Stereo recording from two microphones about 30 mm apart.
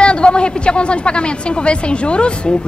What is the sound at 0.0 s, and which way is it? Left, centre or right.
A woman's voice, left.